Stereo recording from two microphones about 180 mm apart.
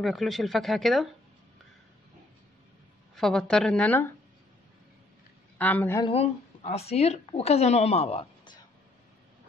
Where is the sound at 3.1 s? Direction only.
Centre (ahead or behind).